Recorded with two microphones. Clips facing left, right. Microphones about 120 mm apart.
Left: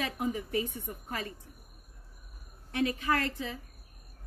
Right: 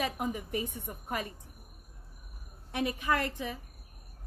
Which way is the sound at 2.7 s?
15° right (ahead or behind).